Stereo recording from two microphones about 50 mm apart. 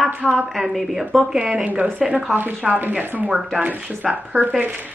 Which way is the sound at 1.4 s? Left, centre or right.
Right.